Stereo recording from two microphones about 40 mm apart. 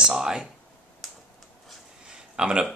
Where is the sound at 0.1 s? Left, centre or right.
Centre.